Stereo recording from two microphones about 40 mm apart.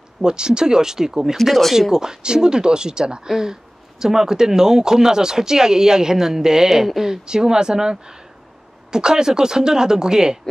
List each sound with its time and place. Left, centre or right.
0.2 s speech: centre